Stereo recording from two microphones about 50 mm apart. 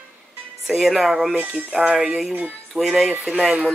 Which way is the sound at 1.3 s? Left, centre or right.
Right.